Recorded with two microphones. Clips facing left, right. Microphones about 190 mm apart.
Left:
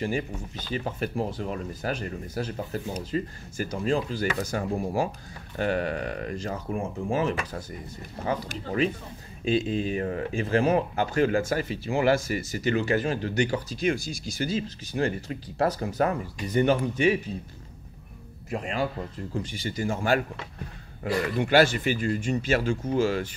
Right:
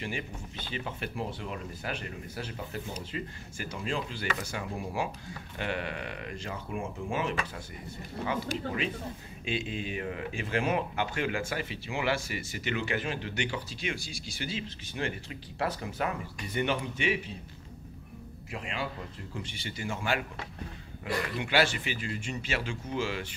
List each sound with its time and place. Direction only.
0.0 s speech: 40° left (ahead or behind)
18.5 s speech: 45° left (ahead or behind)